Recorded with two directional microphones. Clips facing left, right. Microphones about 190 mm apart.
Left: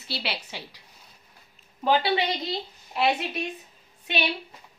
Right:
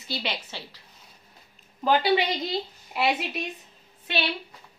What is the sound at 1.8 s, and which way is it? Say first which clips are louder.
A woman's voice: right 1 dB; centre (ahead or behind).